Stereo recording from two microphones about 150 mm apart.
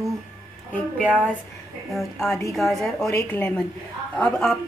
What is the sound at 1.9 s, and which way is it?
A woman's voice, centre (ahead or behind).